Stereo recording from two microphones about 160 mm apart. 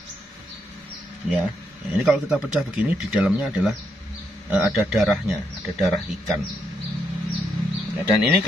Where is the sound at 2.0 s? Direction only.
5° right (ahead or behind).